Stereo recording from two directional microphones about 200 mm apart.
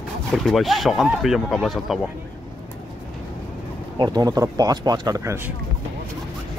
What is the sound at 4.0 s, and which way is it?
Speech, 20° right (ahead or behind).